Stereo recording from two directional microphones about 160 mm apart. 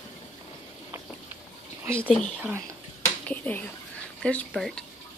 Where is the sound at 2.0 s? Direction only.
5° left (ahead or behind).